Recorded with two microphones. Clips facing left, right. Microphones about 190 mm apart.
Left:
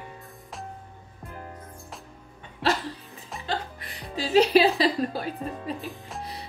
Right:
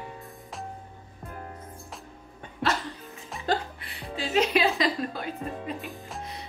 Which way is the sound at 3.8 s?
40° left (ahead or behind).